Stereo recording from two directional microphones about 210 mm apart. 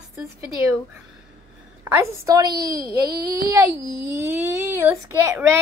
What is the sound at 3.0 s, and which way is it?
Speech, 50° right (ahead or behind).